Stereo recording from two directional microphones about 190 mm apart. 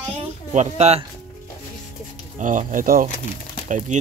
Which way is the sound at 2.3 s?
45° right (ahead or behind).